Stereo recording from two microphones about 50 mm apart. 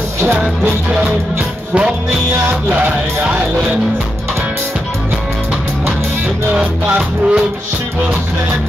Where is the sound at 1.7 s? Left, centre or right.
Right.